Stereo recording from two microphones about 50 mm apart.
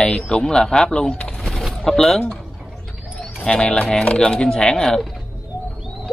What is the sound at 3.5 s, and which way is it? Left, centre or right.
Speech, centre.